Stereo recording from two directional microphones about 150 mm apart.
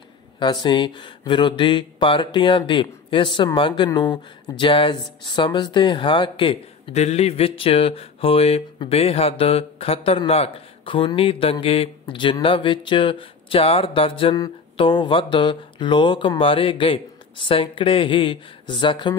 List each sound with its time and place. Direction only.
0.4 s speech: 30° left (ahead or behind)